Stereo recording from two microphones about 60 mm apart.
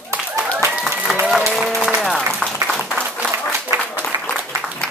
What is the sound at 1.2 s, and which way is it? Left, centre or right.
Applause, centre.